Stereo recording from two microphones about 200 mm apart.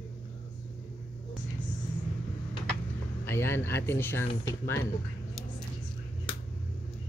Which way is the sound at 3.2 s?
10° left (ahead or behind).